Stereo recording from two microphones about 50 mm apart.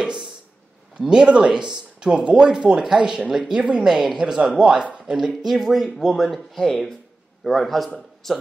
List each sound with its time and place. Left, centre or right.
0.9 s speech: centre
3.3 s speech: centre
5.1 s a man's voice: centre